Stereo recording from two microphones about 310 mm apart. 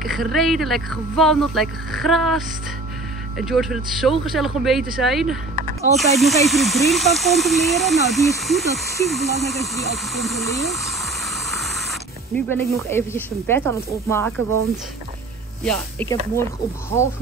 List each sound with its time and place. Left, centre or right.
0.0 s speech: centre
5.6 s snake: right
5.9 s speech: centre
12.4 s speech: centre
15.6 s speech: centre